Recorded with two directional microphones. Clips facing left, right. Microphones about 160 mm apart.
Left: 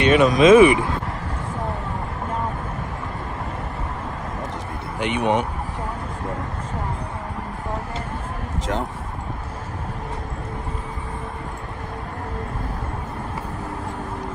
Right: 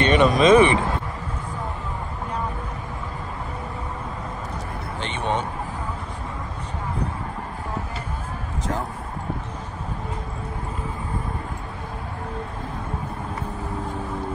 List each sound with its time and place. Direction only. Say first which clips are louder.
0.0 s speech: left 2 dB; centre (ahead or behind)
5.0 s speech: left 6 dB; 15° left (ahead or behind)